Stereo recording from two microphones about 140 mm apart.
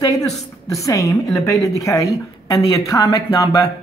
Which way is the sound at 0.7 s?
25° left (ahead or behind).